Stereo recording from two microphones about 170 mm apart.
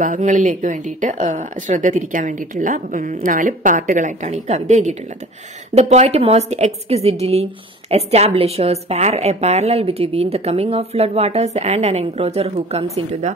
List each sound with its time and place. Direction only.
0.0 s a woman's voice: 50° right (ahead or behind)